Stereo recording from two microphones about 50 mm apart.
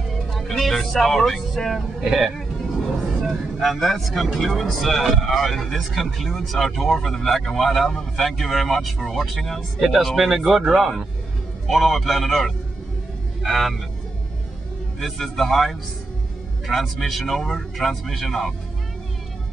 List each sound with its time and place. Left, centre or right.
0.3 s speech: centre
11.6 s speech: centre
15.0 s speech: centre